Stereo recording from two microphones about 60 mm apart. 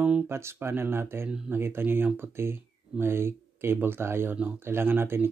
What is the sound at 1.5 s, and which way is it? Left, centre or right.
Speech, right.